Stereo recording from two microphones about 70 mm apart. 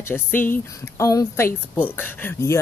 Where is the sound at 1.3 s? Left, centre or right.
Left.